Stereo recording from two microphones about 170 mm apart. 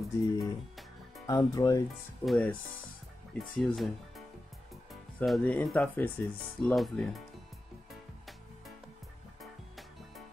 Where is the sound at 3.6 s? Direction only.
Centre (ahead or behind).